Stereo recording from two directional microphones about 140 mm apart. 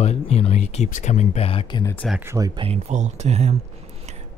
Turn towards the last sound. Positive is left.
turn(degrees=-50)  # may be behind; listen again after turning